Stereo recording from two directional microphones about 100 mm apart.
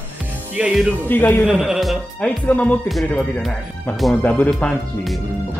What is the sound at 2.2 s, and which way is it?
Speech, 15° left (ahead or behind).